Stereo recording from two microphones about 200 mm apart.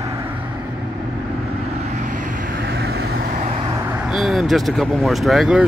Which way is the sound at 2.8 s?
55° right (ahead or behind).